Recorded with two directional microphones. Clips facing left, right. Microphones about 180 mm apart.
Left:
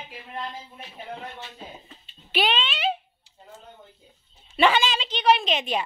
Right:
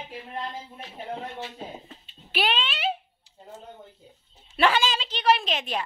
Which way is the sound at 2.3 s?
5° right (ahead or behind).